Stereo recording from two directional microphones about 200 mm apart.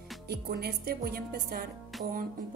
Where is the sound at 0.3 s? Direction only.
50° right (ahead or behind).